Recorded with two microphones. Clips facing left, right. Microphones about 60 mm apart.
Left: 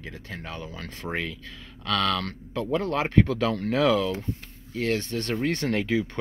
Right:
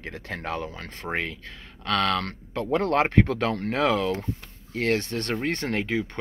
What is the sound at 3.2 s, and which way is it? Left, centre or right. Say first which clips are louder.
Speech: even; right.